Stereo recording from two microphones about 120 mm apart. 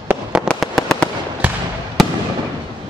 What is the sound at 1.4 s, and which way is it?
Fireworks, 10° right (ahead or behind).